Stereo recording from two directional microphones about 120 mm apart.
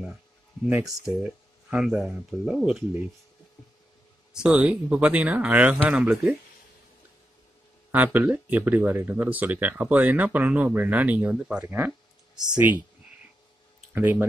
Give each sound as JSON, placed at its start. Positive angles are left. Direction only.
{"t": 1.1, "sound": "speech", "side_deg": -10}
{"t": 4.3, "sound": "speech", "side_deg": -5}
{"t": 7.9, "sound": "speech", "side_deg": -15}
{"t": 11.6, "sound": "speech", "side_deg": -20}
{"t": 13.9, "sound": "speech", "side_deg": -15}